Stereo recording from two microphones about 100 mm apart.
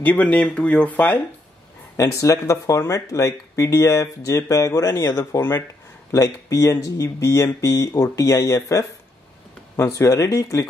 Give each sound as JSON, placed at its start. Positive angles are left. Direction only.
{"t": 0.0, "sound": "speech", "side_deg": 15}
{"t": 2.0, "sound": "speech", "side_deg": 30}